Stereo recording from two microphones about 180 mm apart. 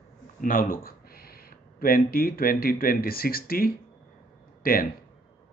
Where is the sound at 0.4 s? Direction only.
50° left (ahead or behind).